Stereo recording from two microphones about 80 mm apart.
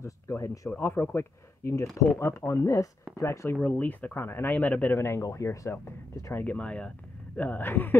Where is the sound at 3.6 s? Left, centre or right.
Left.